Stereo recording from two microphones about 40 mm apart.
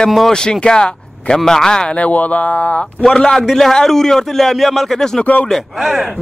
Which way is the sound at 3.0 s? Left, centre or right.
Centre.